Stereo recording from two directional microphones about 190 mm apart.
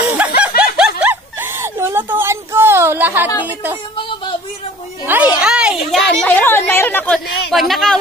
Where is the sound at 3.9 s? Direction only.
25° left (ahead or behind).